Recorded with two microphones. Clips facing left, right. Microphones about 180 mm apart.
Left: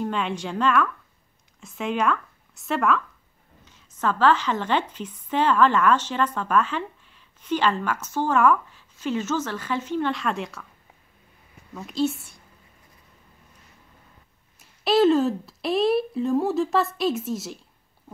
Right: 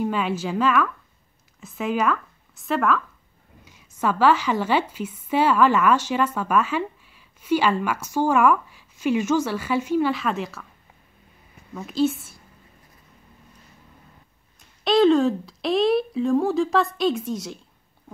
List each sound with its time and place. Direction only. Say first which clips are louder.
0.0 s a woman's voice: right 3 dB; 5° right (ahead or behind)
11.7 s speech: right 3 dB; centre (ahead or behind)
14.6 s speech: right 1 dB; 5° left (ahead or behind)